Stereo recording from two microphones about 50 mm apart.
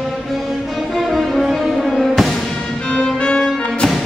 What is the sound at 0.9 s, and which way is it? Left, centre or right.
Music, centre.